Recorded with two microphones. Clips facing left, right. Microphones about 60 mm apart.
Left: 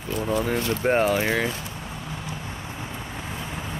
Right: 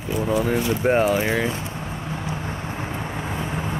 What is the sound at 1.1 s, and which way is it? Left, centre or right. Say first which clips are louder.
Vehicle: right 2 dB; right.